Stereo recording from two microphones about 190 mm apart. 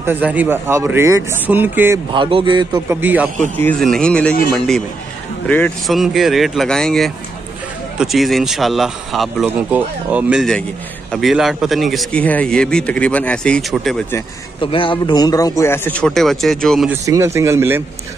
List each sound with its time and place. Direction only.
0.0 s speech: 10° right (ahead or behind)
2.1 s a man's voice: 25° right (ahead or behind)
3.0 s speech: 10° right (ahead or behind)
3.5 s a man's voice: 5° left (ahead or behind)
14.6 s speech: 25° left (ahead or behind); by 16.9 s centre (ahead or behind)
16.9 s speech: 15° right (ahead or behind)